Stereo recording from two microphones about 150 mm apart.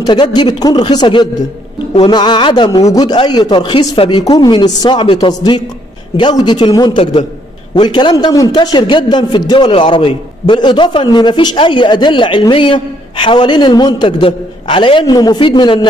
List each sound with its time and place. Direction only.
0.0 s a man's voice: 30° left (ahead or behind)